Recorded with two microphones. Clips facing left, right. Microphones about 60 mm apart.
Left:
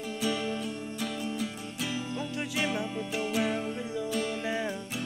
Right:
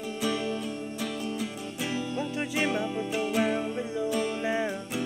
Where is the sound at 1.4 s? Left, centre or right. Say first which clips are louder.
Right 1 dB; right.